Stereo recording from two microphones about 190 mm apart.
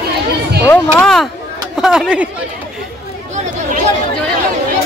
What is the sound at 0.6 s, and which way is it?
Music, 10° left (ahead or behind).